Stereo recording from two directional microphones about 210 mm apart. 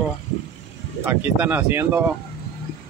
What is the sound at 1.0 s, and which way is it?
Speech, 10° right (ahead or behind).